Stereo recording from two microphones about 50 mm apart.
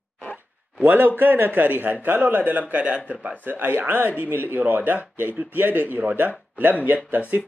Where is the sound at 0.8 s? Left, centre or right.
Right.